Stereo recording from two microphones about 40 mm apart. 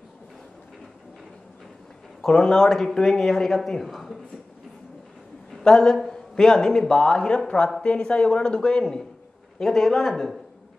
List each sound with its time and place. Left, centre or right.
2.2 s speech: centre
5.6 s a woman's voice: centre